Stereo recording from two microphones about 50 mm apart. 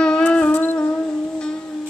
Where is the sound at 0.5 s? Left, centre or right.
Left.